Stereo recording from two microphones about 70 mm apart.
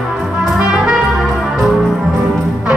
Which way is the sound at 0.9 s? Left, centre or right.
Centre.